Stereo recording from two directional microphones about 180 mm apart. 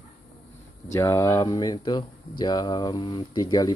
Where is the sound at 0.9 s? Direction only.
15° left (ahead or behind).